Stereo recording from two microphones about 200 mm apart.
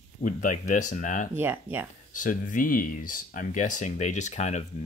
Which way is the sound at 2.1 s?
40° left (ahead or behind).